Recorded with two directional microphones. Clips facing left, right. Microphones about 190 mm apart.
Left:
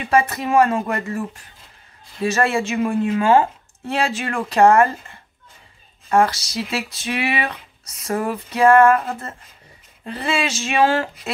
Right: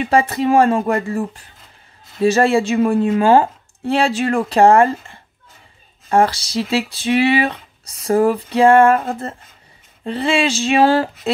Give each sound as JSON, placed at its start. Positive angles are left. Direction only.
{"t": 0.1, "sound": "speech", "side_deg": -30}
{"t": 6.0, "sound": "speech", "side_deg": -30}